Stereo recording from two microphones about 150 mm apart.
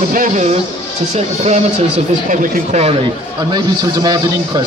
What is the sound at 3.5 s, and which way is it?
Speech, 25° right (ahead or behind).